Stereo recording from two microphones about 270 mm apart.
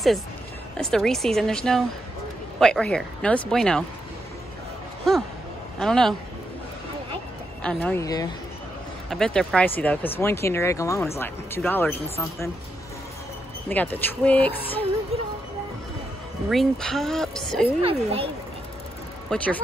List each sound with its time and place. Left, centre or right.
0.7 s a woman's voice: centre
5.8 s a woman's voice: centre
7.6 s speech: centre
9.1 s speech: centre
13.7 s speech: centre
16.4 s a woman's voice: centre
17.8 s a woman's voice: right
19.2 s speech: centre